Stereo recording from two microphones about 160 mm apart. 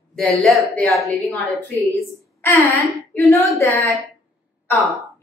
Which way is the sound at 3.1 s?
15° left (ahead or behind).